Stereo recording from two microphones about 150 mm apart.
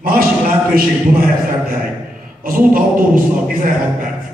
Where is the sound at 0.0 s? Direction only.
75° right (ahead or behind).